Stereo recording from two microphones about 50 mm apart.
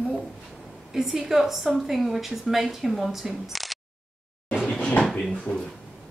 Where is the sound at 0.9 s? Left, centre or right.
Centre.